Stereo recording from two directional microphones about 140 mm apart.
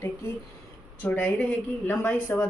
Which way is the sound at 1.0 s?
10° left (ahead or behind).